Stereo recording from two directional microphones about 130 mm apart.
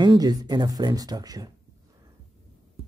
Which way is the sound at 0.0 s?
30° right (ahead or behind).